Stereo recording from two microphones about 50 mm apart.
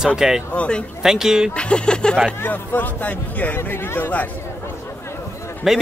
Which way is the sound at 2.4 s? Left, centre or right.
Left.